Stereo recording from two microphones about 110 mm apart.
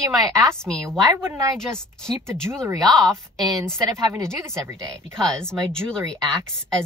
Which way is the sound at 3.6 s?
25° right (ahead or behind).